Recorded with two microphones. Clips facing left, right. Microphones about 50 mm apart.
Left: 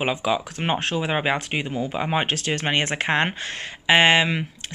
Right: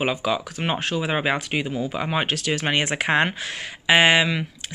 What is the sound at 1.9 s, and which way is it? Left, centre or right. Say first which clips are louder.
Speech: left 1 dB; centre.